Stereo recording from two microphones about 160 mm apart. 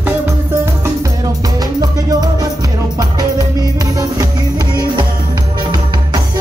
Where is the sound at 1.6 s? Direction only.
25° right (ahead or behind).